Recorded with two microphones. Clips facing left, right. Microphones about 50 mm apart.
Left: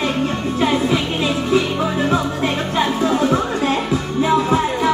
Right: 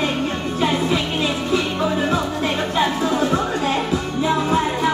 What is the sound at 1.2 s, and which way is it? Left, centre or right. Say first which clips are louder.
Music: left 3 dB; centre.